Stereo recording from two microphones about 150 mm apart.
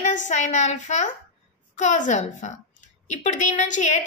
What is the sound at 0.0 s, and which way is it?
A woman's voice, 55° left (ahead or behind).